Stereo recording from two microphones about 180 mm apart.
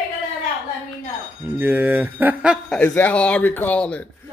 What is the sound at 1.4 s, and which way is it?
Speech, 10° right (ahead or behind).